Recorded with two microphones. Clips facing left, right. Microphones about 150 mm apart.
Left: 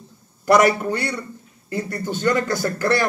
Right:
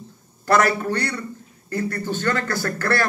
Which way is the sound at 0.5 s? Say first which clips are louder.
Left 3 dB; 20° left (ahead or behind).